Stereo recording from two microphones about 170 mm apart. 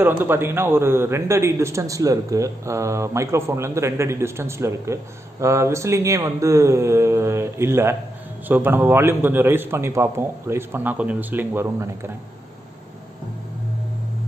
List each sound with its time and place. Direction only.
0.0 s a man's voice: 15° right (ahead or behind)